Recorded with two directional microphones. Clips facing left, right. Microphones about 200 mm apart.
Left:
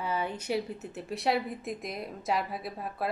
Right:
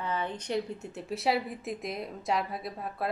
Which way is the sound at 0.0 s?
10° left (ahead or behind).